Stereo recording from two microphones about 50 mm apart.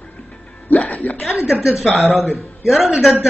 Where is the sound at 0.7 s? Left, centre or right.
Left.